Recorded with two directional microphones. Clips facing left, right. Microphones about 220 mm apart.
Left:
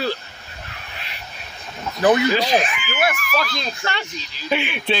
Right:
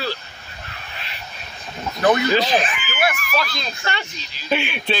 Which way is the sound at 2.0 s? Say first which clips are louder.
Left 1 dB; 10° left (ahead or behind).